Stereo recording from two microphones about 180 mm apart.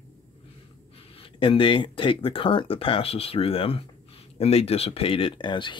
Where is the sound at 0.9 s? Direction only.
30° left (ahead or behind).